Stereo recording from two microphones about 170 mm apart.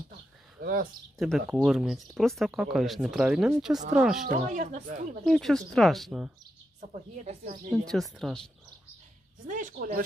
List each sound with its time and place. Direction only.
0.6 s speech: 60° right (ahead or behind)
1.1 s speech: centre (ahead or behind)
4.3 s speech: 50° right (ahead or behind)
5.2 s speech: centre (ahead or behind)
6.9 s speech: 45° right (ahead or behind)
7.7 s speech: centre (ahead or behind)
9.5 s speech: 50° right (ahead or behind)